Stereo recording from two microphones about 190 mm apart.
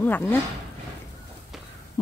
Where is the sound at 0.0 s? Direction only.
10° left (ahead or behind).